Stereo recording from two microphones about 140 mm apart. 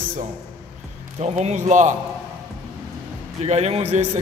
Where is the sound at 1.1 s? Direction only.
50° right (ahead or behind).